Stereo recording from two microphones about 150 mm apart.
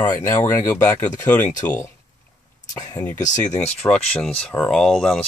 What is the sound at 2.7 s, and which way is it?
Speech, 25° left (ahead or behind).